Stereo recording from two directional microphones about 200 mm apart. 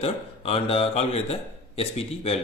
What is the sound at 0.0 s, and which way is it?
Speech, 30° left (ahead or behind).